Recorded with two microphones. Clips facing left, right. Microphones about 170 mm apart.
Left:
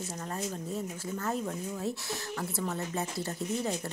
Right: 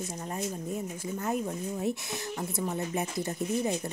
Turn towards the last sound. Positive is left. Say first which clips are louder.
# right 3 dB
turn(degrees=-15)  # may be behind; listen again after turning